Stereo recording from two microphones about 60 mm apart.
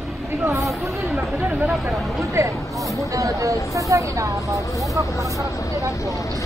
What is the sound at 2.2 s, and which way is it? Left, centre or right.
Speech, right.